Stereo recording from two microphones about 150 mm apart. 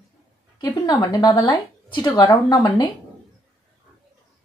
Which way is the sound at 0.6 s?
30° left (ahead or behind).